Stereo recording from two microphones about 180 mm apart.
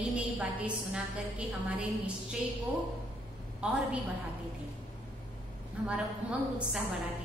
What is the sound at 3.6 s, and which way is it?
Speech, 5° right (ahead or behind).